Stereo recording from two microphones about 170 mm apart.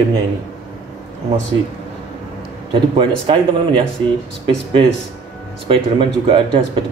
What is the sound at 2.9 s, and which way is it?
Speech, 30° right (ahead or behind).